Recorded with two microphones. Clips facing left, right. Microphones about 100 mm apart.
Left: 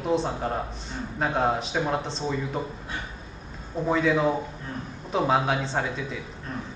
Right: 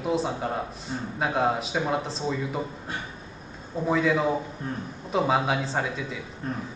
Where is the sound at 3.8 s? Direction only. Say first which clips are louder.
Left 1 dB; centre (ahead or behind).